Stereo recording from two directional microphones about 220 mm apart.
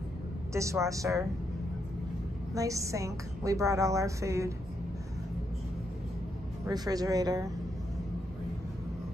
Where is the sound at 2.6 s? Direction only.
15° right (ahead or behind).